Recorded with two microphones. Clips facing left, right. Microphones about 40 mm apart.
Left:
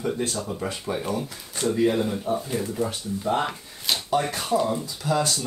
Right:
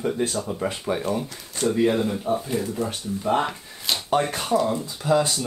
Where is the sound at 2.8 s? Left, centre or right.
Centre.